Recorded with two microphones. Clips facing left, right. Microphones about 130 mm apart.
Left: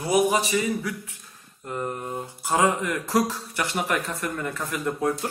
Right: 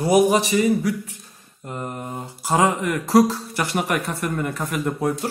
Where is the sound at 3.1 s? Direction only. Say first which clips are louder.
Right 9 dB; 35° right (ahead or behind).